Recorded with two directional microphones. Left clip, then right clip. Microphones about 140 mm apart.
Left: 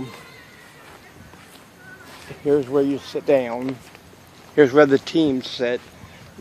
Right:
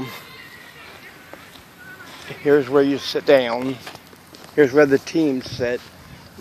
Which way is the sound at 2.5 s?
15° right (ahead or behind).